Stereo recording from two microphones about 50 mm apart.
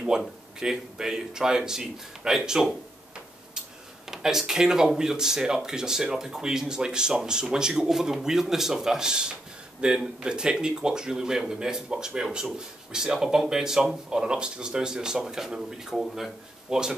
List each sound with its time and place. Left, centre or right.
0.1 s speech: centre
4.1 s speech: centre